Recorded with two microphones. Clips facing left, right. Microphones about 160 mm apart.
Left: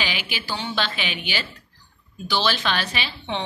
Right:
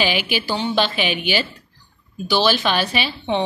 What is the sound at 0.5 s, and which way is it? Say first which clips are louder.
Speech: right 6 dB; 15° right (ahead or behind).